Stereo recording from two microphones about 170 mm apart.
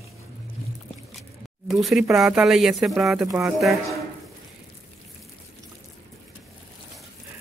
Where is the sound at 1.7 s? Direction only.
Centre (ahead or behind).